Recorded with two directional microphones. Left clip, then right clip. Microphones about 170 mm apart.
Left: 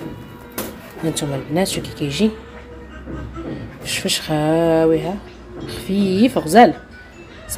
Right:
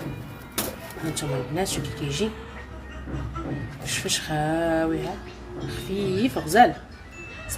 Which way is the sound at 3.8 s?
45° left (ahead or behind).